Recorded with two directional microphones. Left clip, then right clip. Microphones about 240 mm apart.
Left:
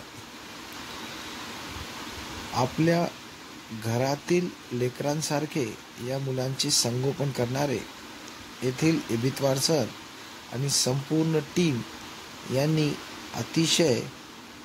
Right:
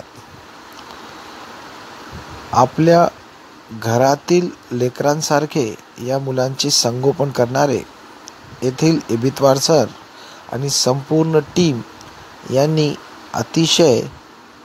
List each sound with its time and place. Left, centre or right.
2.5 s speech: right